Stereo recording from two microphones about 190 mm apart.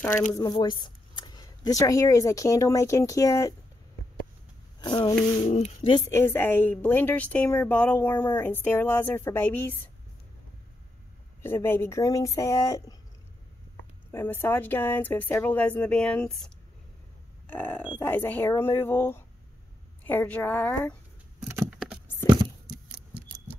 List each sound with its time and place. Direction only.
0.3 s speech: 20° left (ahead or behind)
4.7 s a woman's voice: 25° left (ahead or behind)
11.4 s a woman's voice: 10° left (ahead or behind)
14.1 s a woman's voice: 10° left (ahead or behind)
21.5 s patter: 10° right (ahead or behind)